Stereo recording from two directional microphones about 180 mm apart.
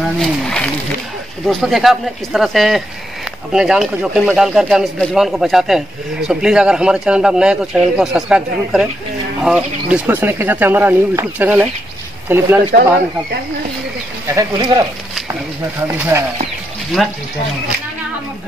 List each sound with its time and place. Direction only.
0.2 s a sound: 5° left (ahead or behind)
1.5 s speech: centre (ahead or behind)
14.3 s speech: 20° right (ahead or behind)
16.0 s speech: 15° right (ahead or behind)